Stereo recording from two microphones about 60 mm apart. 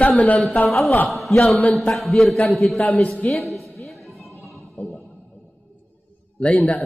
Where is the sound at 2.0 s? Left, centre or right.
Centre.